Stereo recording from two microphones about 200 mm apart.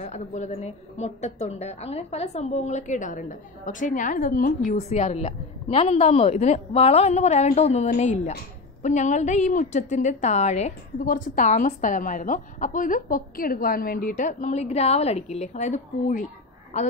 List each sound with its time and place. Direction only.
0.0 s a woman's voice: 35° left (ahead or behind)